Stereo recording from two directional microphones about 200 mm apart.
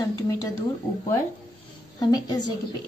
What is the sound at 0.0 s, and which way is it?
A woman's voice, 20° left (ahead or behind).